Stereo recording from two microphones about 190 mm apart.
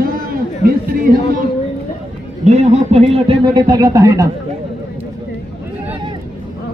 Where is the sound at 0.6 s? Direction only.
50° right (ahead or behind).